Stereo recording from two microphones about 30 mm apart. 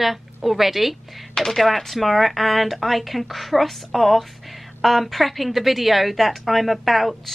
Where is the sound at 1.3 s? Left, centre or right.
Centre.